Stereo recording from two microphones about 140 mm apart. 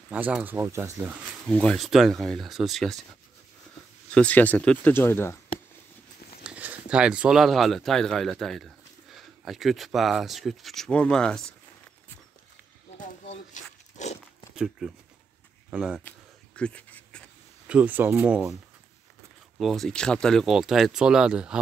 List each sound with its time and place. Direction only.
0.1 s speech: 10° right (ahead or behind)
1.5 s speech: 5° left (ahead or behind)
4.1 s speech: 10° left (ahead or behind)
6.4 s speech: 10° right (ahead or behind)
12.9 s a sound: 60° left (ahead or behind)
14.5 s speech: 5° right (ahead or behind)
16.0 s a sound: 10° left (ahead or behind)
17.6 s speech: 10° right (ahead or behind)
19.6 s speech: centre (ahead or behind)